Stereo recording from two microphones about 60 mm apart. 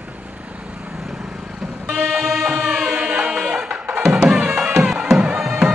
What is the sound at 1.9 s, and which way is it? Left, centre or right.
Vehicle, centre.